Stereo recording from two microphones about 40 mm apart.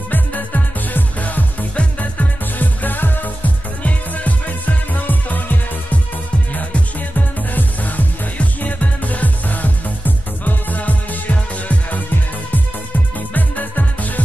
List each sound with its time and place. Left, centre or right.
0.1 s music: left
7.5 s music: left
13.3 s music: left